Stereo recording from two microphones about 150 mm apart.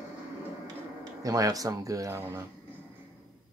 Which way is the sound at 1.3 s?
25° right (ahead or behind).